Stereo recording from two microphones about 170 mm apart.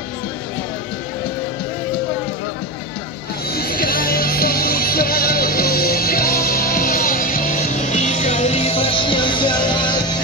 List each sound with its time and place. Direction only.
3.5 s music: 65° left (ahead or behind); by 10.1 s 25° left (ahead or behind)